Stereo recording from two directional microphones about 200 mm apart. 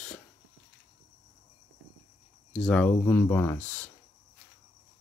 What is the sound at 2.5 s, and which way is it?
Speech, 5° left (ahead or behind).